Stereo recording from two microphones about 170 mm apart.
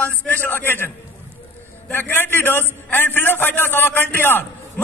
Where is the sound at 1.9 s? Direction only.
10° left (ahead or behind).